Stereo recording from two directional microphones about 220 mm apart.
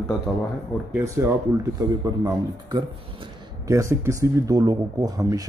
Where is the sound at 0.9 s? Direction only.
10° right (ahead or behind).